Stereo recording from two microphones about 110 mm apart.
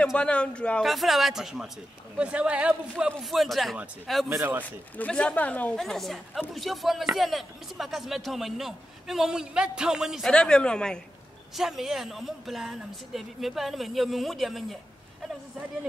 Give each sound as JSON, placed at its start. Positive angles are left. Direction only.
{"t": 0.0, "sound": "speech", "side_deg": 10}
{"t": 0.8, "sound": "a man's voice", "side_deg": 0}
{"t": 3.2, "sound": "a man's voice", "side_deg": 0}
{"t": 4.4, "sound": "speech", "side_deg": -15}
{"t": 4.6, "sound": "speech", "side_deg": 15}
{"t": 5.8, "sound": "a man's voice", "side_deg": 0}
{"t": 10.3, "sound": "a man's voice", "side_deg": 5}